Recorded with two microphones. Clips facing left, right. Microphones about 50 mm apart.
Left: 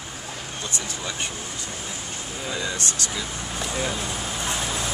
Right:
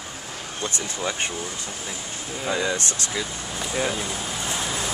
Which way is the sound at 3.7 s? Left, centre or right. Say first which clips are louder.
Right 3 dB; centre.